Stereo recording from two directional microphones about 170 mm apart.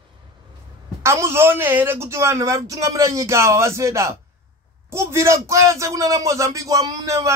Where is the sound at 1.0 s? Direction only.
15° right (ahead or behind).